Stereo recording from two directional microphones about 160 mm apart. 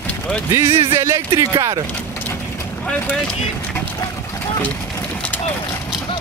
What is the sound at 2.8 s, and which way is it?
Speech, 10° left (ahead or behind).